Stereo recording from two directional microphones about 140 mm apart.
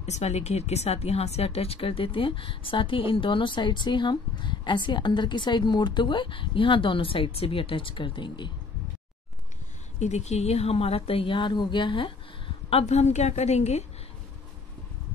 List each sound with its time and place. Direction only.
0.0 s speech: 50° left (ahead or behind); by 8.5 s 35° left (ahead or behind)
9.9 s speech: 55° left (ahead or behind); by 12.1 s 35° left (ahead or behind)
12.6 s a woman's voice: 50° left (ahead or behind)